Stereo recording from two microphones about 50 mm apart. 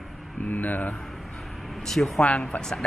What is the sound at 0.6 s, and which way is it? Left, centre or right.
Speech, left.